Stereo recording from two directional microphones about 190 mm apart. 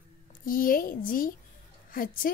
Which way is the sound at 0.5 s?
50° left (ahead or behind).